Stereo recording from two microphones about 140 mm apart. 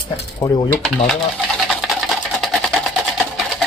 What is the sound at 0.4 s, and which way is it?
Speech, 25° left (ahead or behind).